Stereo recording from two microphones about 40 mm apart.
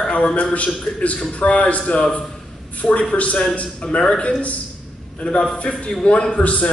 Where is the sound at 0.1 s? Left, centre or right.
Left.